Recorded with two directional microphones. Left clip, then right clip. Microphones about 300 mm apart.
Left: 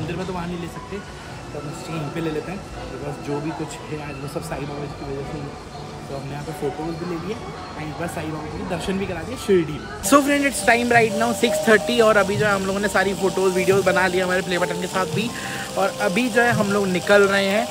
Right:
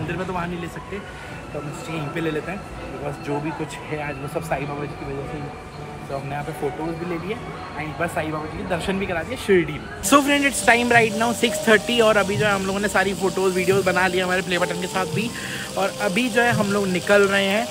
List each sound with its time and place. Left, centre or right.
8.0 s speech: centre